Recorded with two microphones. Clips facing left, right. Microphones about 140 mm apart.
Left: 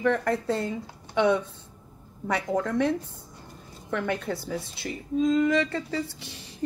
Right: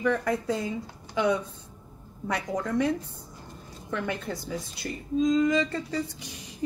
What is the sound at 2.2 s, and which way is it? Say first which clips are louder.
Speech: left 3 dB; 5° right (ahead or behind).